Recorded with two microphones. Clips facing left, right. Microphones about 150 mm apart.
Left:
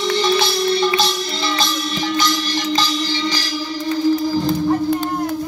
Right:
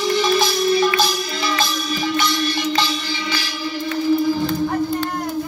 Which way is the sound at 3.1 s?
35° left (ahead or behind).